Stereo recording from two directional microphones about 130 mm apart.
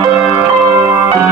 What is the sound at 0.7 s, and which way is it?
Change ringing, 25° right (ahead or behind).